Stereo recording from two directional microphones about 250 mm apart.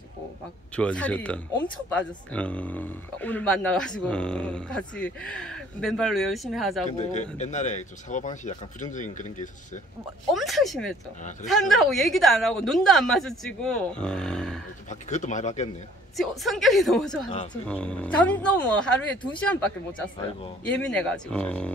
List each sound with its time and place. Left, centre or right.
0.7 s speech: centre
7.3 s speech: left
10.3 s speech: centre
14.9 s speech: left
16.2 s speech: centre
20.6 s speech: centre